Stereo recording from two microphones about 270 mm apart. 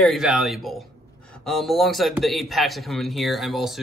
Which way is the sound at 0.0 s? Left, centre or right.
Centre.